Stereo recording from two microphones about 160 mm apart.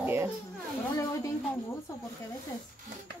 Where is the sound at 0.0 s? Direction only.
15° right (ahead or behind).